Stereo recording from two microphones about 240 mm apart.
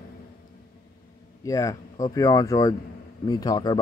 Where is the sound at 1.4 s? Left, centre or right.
Centre.